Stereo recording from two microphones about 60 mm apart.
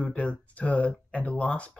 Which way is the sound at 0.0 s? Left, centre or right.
Left.